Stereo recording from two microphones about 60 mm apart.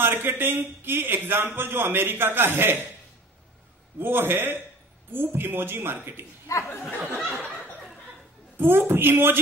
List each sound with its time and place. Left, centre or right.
0.0 s a man's voice: right
4.0 s a man's voice: right
6.5 s speech: left
7.2 s snicker: left
8.5 s a man's voice: right